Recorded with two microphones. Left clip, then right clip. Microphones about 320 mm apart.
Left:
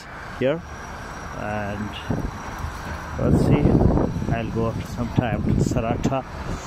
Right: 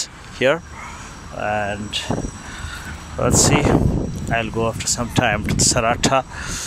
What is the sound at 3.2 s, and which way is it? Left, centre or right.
Speech, right.